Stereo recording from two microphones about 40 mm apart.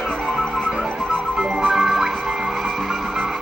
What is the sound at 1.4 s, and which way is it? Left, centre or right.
Music, centre.